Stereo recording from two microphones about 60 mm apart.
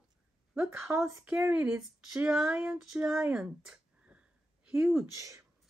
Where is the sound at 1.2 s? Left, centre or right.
Right.